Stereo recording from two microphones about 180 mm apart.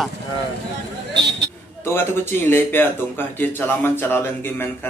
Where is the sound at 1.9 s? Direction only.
15° left (ahead or behind).